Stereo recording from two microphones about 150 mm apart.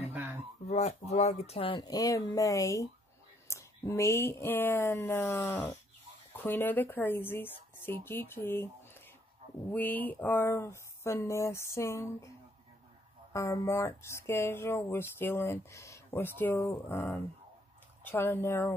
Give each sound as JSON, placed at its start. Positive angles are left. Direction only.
{"t": 0.1, "sound": "a sound", "side_deg": -10}
{"t": 0.7, "sound": "speech", "side_deg": 45}
{"t": 13.3, "sound": "speech", "side_deg": 20}